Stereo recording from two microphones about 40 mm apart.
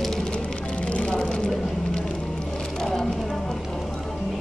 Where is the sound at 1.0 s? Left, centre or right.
Left.